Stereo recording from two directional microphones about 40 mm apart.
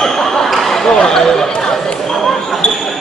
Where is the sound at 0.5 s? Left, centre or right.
Centre.